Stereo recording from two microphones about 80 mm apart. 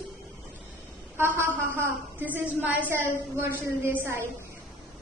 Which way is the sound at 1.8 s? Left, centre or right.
Right.